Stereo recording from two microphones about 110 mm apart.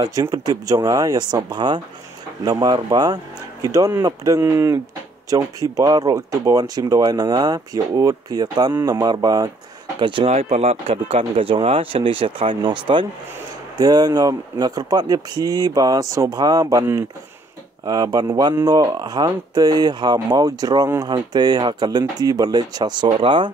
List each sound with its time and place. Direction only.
0.0 s speech: 35° right (ahead or behind)
9.9 s speech: 50° right (ahead or behind)
10.3 s speech: 70° right (ahead or behind); by 13.0 s 45° right (ahead or behind)
13.7 s speech: 35° right (ahead or behind)
17.8 s speech: 35° right (ahead or behind)